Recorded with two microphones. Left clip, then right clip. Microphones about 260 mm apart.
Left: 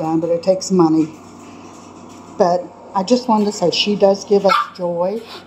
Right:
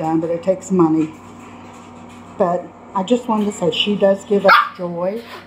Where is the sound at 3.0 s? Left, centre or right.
Left.